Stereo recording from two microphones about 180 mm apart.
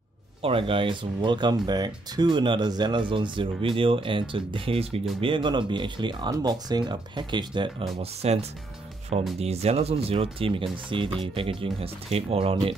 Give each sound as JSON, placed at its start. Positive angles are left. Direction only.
{"t": 0.4, "sound": "speech", "side_deg": -30}
{"t": 8.0, "sound": "speech", "side_deg": -35}